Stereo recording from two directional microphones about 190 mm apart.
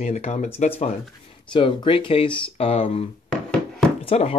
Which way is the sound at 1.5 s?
25° left (ahead or behind).